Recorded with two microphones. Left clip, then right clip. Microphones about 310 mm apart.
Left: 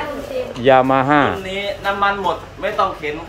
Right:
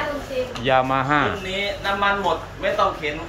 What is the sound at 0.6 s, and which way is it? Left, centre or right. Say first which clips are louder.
Speech: left 7 dB; centre.